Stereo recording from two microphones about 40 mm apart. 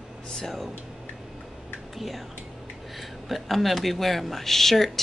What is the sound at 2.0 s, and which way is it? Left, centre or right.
Speech, centre.